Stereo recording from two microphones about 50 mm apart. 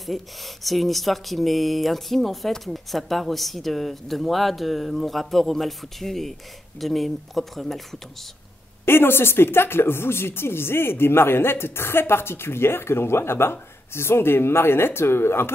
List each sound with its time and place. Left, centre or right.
0.0 s speech: centre
8.8 s speech: left